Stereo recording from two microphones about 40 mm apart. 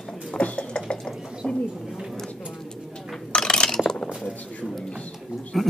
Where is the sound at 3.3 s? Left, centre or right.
Left.